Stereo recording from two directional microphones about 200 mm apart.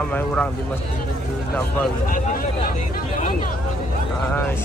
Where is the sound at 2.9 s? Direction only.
45° left (ahead or behind).